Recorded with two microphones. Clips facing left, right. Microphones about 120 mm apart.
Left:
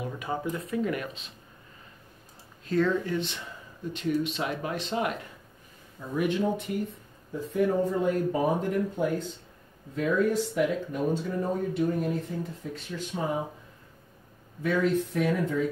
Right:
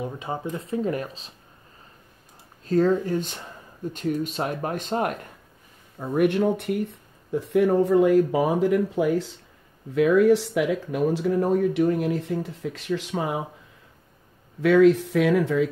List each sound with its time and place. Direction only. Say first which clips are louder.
0.0 s speech: right 2 dB; 25° right (ahead or behind)
2.6 s speech: right 5 dB; 40° right (ahead or behind)
5.9 s speech: right 6 dB; 60° right (ahead or behind); by 13.4 s 90° right
14.6 s speech: right 9 dB; 90° right